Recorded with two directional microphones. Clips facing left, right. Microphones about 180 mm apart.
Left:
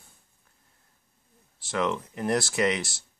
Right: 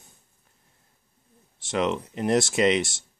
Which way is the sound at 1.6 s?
20° right (ahead or behind).